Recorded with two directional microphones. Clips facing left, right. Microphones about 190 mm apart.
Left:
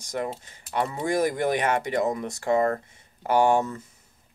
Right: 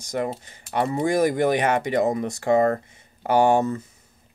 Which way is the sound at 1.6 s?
20° right (ahead or behind).